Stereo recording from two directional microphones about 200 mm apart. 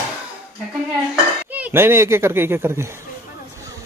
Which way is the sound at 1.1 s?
10° right (ahead or behind).